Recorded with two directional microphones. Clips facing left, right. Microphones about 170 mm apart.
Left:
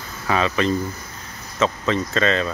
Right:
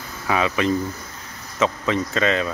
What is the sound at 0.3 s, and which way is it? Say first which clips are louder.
Speech: even; 10° right (ahead or behind).